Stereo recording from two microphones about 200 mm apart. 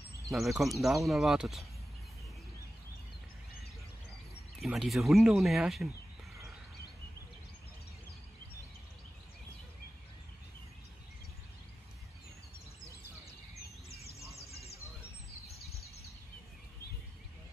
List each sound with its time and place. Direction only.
0.3 s speech: centre (ahead or behind)
4.6 s speech: centre (ahead or behind)
14.3 s bird: 30° left (ahead or behind)